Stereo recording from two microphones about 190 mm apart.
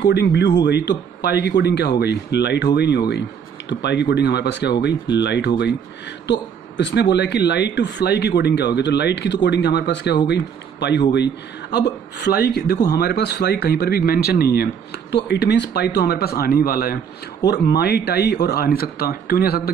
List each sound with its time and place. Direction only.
0.0 s speech: 65° left (ahead or behind)
6.8 s speech: 65° left (ahead or behind)